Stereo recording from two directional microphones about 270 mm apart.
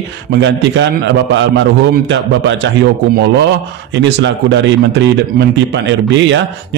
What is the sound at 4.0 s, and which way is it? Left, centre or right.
Speech, right.